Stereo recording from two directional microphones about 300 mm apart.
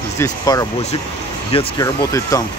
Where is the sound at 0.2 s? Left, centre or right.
Centre.